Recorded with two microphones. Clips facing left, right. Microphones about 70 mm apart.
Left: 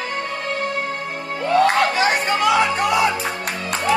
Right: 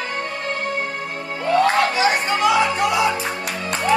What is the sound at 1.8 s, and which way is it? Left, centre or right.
Music, left.